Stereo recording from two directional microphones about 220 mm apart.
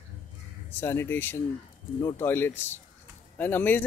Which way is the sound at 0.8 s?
10° left (ahead or behind).